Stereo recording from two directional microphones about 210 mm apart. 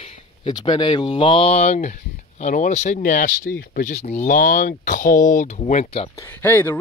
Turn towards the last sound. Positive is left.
turn(degrees=10)  # may be behind; listen again after turning